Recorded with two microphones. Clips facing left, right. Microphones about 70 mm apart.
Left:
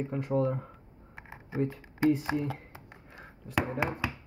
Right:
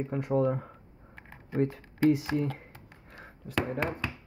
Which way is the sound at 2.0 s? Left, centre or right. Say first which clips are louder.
Right 1 dB; centre.